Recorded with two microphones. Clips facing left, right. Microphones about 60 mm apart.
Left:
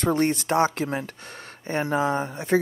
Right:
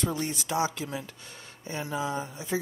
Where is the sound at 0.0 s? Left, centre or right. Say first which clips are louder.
Left 9 dB; left.